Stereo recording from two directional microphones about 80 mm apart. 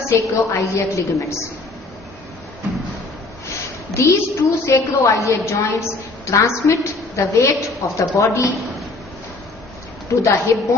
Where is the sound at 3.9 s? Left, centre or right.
Left.